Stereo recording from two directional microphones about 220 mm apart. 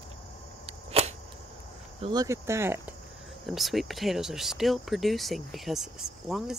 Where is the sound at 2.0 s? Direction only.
20° right (ahead or behind).